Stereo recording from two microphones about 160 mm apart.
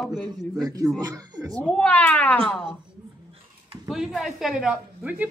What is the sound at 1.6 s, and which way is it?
Speech, 5° left (ahead or behind).